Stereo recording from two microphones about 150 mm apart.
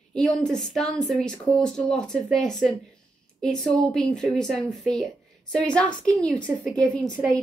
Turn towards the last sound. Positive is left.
turn(degrees=5)  # may be behind; listen again after turning